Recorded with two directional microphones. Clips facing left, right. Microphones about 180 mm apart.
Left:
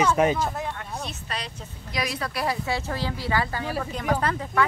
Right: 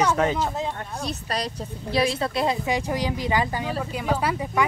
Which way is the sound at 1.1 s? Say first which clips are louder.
Right 6 dB; 40° right (ahead or behind).